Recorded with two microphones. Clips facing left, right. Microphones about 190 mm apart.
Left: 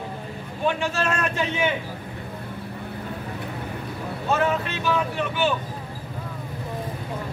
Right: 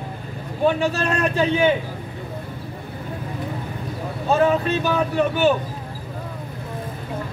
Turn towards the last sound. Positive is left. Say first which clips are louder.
# right 6 dB
turn(degrees=-40)  # may be behind; listen again after turning